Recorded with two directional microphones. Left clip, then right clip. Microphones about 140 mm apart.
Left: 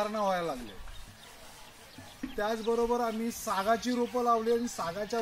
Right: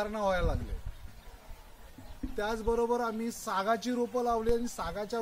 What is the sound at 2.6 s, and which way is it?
A woman's voice, 10° right (ahead or behind).